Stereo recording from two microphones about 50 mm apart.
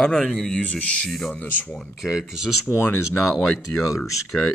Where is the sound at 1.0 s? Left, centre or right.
Centre.